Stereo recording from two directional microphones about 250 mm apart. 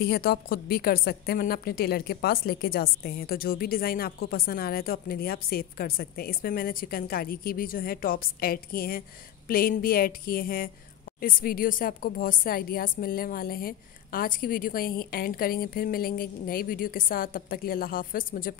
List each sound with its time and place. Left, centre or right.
0.0 s a woman's voice: left